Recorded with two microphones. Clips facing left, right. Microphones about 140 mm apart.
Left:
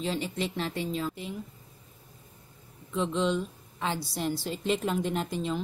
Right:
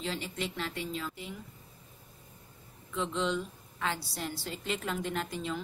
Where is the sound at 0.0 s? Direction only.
25° left (ahead or behind).